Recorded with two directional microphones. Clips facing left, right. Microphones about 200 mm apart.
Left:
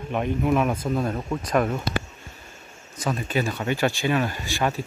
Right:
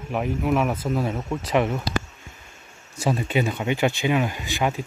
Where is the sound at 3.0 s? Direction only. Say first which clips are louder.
Right 2 dB; 25° right (ahead or behind).